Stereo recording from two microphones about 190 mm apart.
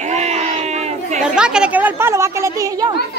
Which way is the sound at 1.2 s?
5° right (ahead or behind).